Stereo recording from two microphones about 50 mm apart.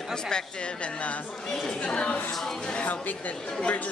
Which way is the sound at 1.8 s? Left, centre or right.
Left.